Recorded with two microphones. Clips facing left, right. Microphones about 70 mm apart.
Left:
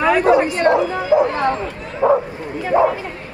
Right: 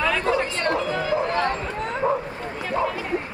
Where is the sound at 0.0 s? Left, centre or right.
Left.